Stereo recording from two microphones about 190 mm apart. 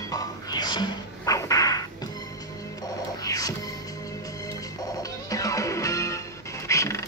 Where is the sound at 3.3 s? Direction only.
20° left (ahead or behind).